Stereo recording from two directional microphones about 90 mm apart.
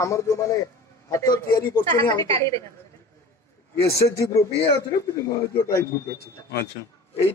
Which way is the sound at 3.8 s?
35° left (ahead or behind).